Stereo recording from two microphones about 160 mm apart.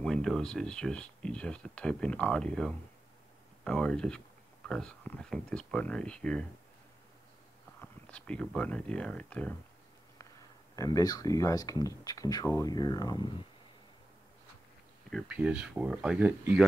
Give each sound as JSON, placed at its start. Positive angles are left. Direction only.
{"t": 0.0, "sound": "speech", "side_deg": 5}
{"t": 7.8, "sound": "speech", "side_deg": 5}
{"t": 10.8, "sound": "speech", "side_deg": 20}
{"t": 15.2, "sound": "speech", "side_deg": -10}